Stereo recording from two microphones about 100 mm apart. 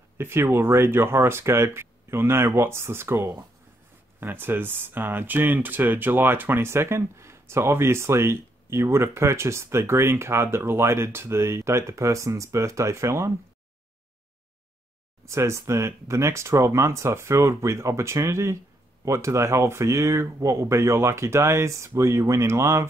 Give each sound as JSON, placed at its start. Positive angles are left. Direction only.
{"t": 0.2, "sound": "speech", "side_deg": -25}
{"t": 15.2, "sound": "speech", "side_deg": -30}